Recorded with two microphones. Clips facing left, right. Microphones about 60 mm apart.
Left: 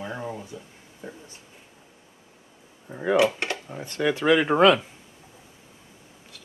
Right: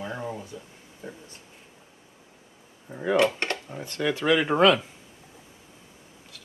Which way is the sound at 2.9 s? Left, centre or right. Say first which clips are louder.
Left 1 dB; centre.